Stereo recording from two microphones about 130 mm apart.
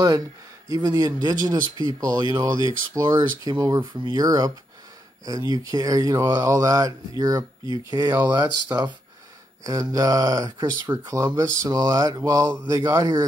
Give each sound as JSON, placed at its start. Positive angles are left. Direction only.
{"t": 0.7, "sound": "speech", "side_deg": -30}